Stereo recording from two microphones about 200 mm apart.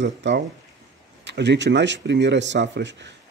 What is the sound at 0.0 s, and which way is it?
Speech, 60° right (ahead or behind).